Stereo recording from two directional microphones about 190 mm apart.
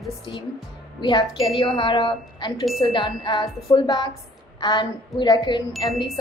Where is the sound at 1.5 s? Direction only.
30° left (ahead or behind).